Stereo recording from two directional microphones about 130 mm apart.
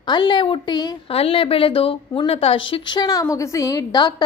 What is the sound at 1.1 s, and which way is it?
A woman's voice, 45° left (ahead or behind).